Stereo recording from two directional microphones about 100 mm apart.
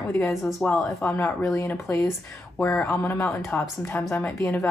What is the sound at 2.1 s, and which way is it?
Speech, centre (ahead or behind).